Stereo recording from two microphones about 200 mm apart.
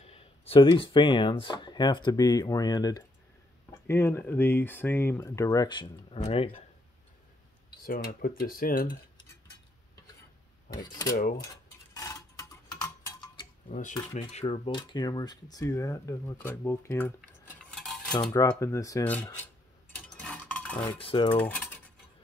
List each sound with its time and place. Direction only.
0.0 s speech: 30° left (ahead or behind)
7.8 s speech: 45° left (ahead or behind)
10.7 s speech: 20° left (ahead or behind)
11.9 s tick-tock: 20° left (ahead or behind)
13.7 s speech: 40° left (ahead or behind); by 17.1 s 15° left (ahead or behind)
17.6 s cutlery: 5° left (ahead or behind)
18.3 s speech: 15° left (ahead or behind)
20.0 s cutlery: 5° left (ahead or behind)
21.0 s speech: 25° left (ahead or behind)
21.4 s speech: 10° left (ahead or behind)